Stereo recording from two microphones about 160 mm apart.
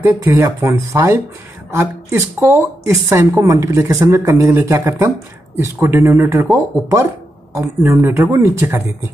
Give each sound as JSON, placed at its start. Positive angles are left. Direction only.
{"t": 0.0, "sound": "a woman's voice", "side_deg": -15}